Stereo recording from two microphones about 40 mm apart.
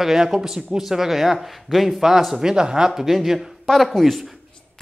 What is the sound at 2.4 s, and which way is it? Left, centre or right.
Speech, centre.